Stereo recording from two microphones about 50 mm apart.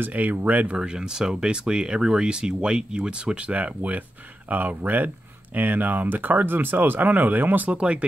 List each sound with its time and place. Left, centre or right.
0.0 s speech: right
0.7 s speech: centre; by 7.8 s right